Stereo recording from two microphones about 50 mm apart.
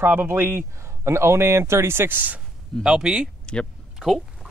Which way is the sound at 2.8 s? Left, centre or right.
Centre.